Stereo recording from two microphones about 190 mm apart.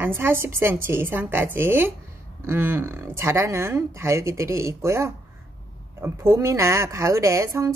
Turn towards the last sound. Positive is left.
turn(degrees=-15)  # may be behind; listen again after turning